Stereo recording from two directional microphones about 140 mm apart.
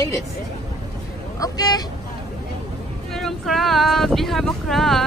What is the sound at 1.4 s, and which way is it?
Speech, 25° left (ahead or behind).